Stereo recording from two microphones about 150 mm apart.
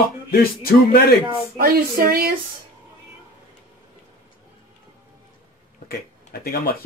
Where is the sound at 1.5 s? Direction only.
80° right.